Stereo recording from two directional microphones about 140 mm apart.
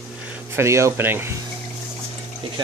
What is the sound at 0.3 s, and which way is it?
Speech, 20° right (ahead or behind).